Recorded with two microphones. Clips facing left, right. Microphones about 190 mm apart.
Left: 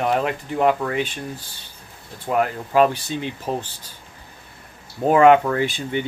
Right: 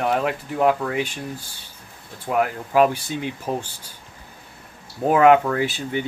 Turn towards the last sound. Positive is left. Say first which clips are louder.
# left 1 dB
turn(degrees=-5)  # may be behind; listen again after turning